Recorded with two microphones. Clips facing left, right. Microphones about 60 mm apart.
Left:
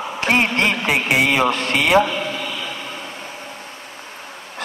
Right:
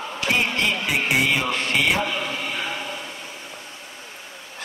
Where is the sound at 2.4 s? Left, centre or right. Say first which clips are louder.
Even; right.